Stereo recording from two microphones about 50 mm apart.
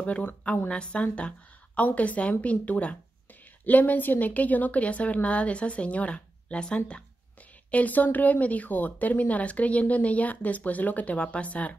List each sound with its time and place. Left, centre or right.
0.0 s a woman's voice: left
7.7 s speech: left